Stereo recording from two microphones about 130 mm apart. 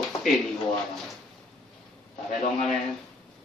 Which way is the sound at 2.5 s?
Centre (ahead or behind).